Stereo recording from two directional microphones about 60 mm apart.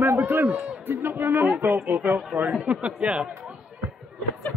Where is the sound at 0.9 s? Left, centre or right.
Right; by 3.3 s centre.